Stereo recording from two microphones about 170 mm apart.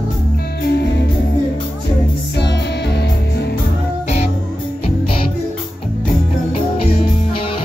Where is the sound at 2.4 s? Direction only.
80° left.